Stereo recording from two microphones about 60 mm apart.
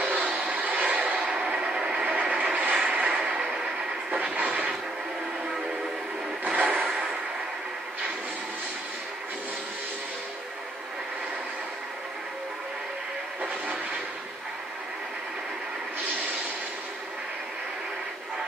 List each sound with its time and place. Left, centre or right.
0.0 s a sound: right
1.3 s vehicle: centre
4.1 s train: right
6.4 s train: right